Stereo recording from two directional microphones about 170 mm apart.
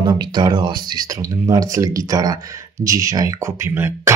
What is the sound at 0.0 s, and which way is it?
Speech, 25° right (ahead or behind).